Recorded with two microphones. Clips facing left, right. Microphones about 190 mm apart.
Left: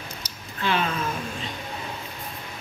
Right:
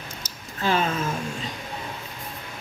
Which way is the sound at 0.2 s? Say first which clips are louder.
Right 2 dB; 40° right (ahead or behind).